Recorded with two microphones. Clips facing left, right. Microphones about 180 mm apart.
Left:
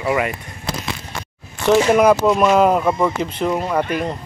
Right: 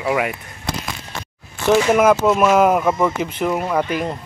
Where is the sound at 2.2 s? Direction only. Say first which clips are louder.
Even; 5° right (ahead or behind).